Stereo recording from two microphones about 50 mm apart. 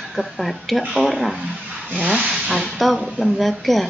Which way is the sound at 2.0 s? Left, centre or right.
Centre.